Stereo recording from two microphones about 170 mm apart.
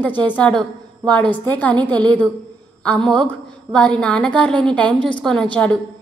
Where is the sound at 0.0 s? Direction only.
10° left (ahead or behind).